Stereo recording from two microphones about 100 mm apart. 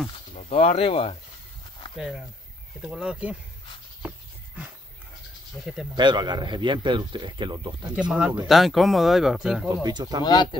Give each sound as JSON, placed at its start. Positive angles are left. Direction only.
{"t": 0.5, "sound": "speech", "side_deg": 90}
{"t": 2.0, "sound": "speech", "side_deg": 0}
{"t": 5.9, "sound": "a man's voice", "side_deg": -45}
{"t": 7.9, "sound": "speech", "side_deg": -10}
{"t": 9.8, "sound": "a man's voice", "side_deg": -45}
{"t": 10.2, "sound": "speech", "side_deg": 50}